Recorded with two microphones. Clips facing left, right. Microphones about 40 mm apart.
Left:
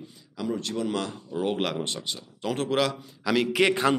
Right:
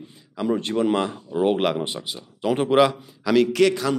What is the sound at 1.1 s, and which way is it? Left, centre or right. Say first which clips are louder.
Speech: right 7 dB; centre.